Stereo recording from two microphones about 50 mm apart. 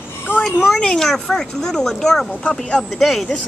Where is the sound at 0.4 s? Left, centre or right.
Centre.